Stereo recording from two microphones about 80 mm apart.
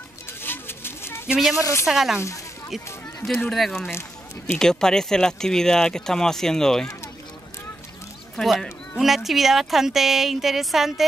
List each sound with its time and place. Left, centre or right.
0.3 s a sound: left
1.2 s speech: centre
1.6 s a woman's voice: left
1.9 s a woman's voice: centre
3.4 s a woman's voice: centre
8.4 s a woman's voice: centre